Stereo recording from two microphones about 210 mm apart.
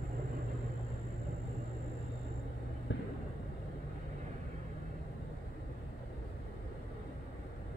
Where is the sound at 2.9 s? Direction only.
60° left (ahead or behind).